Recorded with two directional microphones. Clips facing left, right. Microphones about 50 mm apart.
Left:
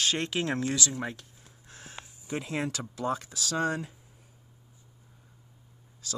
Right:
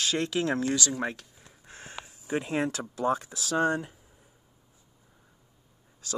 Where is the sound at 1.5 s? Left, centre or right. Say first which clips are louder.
Right 4 dB; right.